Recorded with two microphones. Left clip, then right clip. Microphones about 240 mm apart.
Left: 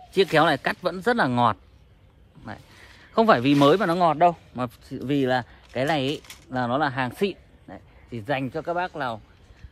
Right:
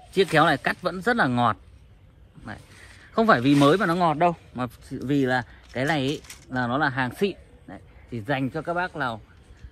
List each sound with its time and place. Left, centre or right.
0.1 s speech: left